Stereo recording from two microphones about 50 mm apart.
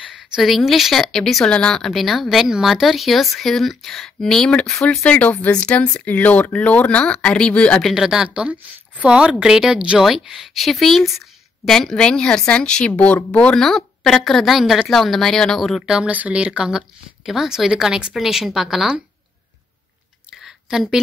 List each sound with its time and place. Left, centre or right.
0.4 s speech: centre
1.9 s speech: centre
2.2 s speech: centre
4.5 s speech: centre
5.9 s speech: left
7.9 s speech: centre
8.3 s speech: right; by 10.5 s centre
10.5 s speech: centre; by 13.6 s left
13.6 s speech: centre
15.8 s speech: centre
16.1 s speech: right; by 18.9 s centre
20.4 s a sound: centre